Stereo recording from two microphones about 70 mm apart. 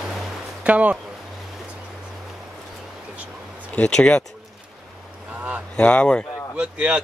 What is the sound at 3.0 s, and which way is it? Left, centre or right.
Music, centre.